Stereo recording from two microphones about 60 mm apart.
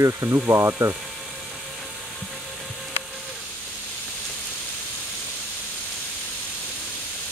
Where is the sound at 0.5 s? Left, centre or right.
Right.